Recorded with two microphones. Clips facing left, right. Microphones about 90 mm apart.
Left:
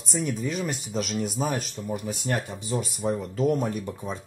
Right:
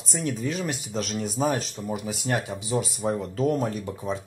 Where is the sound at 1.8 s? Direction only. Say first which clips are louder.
Right 1 dB; 30° right (ahead or behind).